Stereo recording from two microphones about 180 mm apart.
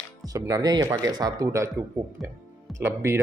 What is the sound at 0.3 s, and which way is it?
Speech, 20° right (ahead or behind).